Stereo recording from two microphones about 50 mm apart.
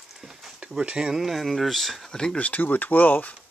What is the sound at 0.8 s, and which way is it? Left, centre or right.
Speech, centre.